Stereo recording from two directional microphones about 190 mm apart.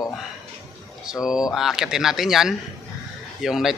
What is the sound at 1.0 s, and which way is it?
A man's voice, 5° right (ahead or behind).